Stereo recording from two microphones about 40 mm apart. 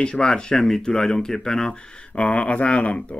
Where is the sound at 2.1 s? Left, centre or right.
Left.